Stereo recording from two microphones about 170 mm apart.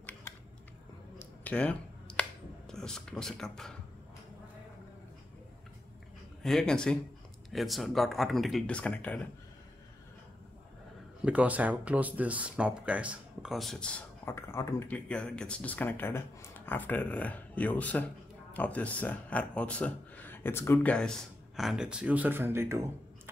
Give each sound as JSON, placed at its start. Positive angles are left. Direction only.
{"t": 1.1, "sound": "a sound", "side_deg": 10}
{"t": 6.4, "sound": "speech", "side_deg": 5}
{"t": 11.2, "sound": "speech", "side_deg": -10}